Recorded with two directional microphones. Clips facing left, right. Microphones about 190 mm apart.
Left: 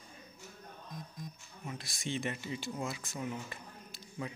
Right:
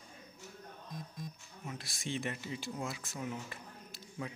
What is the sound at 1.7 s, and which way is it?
Speech, centre (ahead or behind).